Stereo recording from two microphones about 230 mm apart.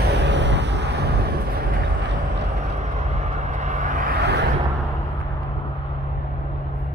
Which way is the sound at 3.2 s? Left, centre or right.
Right.